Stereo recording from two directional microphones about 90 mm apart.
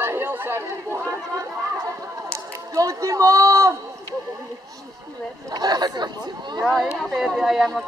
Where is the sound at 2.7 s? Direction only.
35° right (ahead or behind).